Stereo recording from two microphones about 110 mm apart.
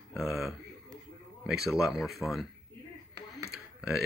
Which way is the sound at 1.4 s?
5° right (ahead or behind).